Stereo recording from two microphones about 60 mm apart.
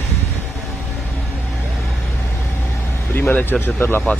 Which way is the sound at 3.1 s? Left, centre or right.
Left.